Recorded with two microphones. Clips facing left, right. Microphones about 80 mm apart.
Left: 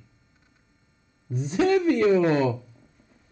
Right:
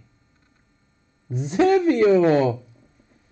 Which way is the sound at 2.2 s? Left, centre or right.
Right.